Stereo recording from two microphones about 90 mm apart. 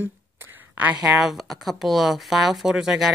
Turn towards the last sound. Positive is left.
turn(degrees=-5)  # may be behind; listen again after turning